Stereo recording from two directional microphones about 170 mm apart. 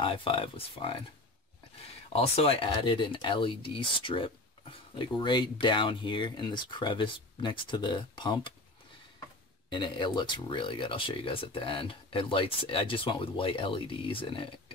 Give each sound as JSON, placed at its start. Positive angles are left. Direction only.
{"t": 0.0, "sound": "speech", "side_deg": 30}
{"t": 2.1, "sound": "speech", "side_deg": 35}
{"t": 9.7, "sound": "speech", "side_deg": 25}